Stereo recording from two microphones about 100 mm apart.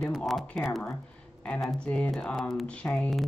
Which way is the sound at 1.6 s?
15° left (ahead or behind).